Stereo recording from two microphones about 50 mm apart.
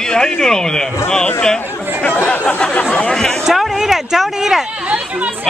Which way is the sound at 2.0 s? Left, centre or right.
Left.